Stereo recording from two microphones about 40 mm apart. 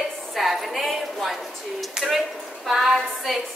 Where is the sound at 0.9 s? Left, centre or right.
Centre.